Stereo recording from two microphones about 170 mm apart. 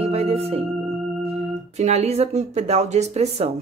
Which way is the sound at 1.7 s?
40° right (ahead or behind).